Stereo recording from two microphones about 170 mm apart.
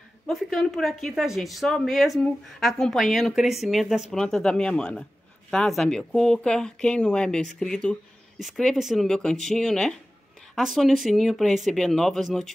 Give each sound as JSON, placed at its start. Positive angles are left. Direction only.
{"t": 0.3, "sound": "speech", "side_deg": 0}